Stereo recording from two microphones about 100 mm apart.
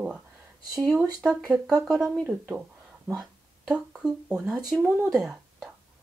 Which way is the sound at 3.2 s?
5° right (ahead or behind).